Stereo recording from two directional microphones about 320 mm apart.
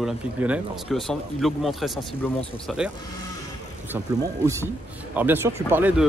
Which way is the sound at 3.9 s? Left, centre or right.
Centre.